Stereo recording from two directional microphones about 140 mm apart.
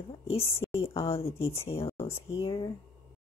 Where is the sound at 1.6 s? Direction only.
40° left (ahead or behind).